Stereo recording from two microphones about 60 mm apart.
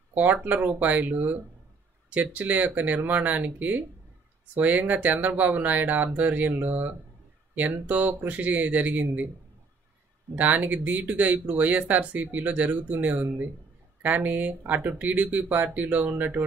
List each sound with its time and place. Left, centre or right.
0.1 s speech: right
10.3 s speech: right